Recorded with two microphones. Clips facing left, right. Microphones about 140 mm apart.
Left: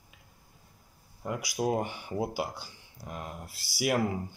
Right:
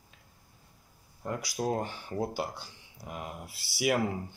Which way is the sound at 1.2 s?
10° left (ahead or behind).